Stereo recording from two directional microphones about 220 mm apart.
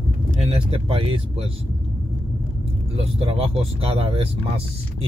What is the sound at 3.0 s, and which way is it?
A man's voice, 25° right (ahead or behind).